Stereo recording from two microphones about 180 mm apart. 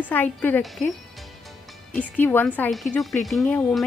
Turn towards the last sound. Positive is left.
turn(degrees=5)  # may be behind; listen again after turning